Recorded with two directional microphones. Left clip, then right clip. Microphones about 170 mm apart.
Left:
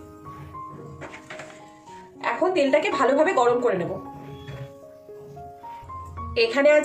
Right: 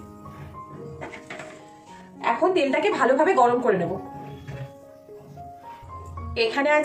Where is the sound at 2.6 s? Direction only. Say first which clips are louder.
Left 1 dB; 55° left (ahead or behind).